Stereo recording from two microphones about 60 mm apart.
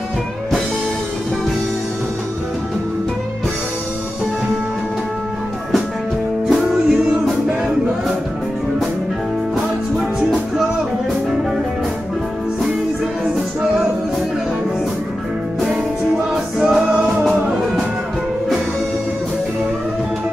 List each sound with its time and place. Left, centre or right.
6.5 s music: centre
16.5 s music: centre